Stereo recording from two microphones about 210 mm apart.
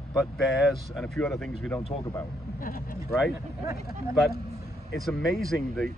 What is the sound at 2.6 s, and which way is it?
Vehicle, 45° left (ahead or behind).